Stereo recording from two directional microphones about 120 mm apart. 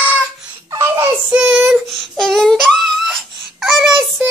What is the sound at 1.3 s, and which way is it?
Child singing, 5° right (ahead or behind).